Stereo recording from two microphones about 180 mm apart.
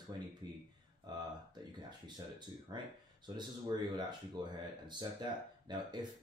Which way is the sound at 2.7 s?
25° right (ahead or behind).